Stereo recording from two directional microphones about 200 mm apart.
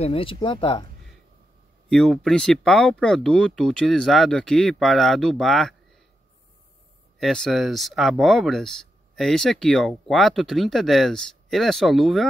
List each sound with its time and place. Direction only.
0.0 s speech: 30° left (ahead or behind)
1.9 s speech: 5° left (ahead or behind)
7.2 s speech: centre (ahead or behind)